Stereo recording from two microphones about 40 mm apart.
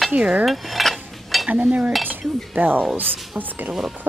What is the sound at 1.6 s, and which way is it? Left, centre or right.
Speech, right.